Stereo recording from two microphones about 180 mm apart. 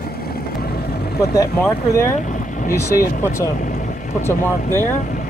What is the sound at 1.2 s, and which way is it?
Speech, 15° left (ahead or behind).